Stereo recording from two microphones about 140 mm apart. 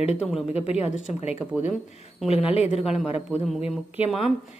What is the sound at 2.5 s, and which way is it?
Speech, 45° left (ahead or behind).